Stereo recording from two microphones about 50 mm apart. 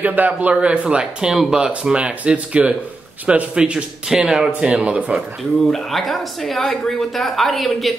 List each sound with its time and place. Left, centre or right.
0.0 s a man's voice: right
1.3 s speech: centre
2.0 s speech: right
4.5 s speech: right
5.7 s a woman's voice: centre